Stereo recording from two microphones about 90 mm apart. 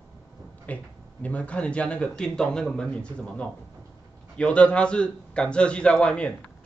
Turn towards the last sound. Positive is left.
turn(degrees=10)  # may be behind; listen again after turning